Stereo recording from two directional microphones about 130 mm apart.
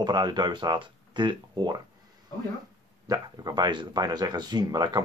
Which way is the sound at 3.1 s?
30° right (ahead or behind).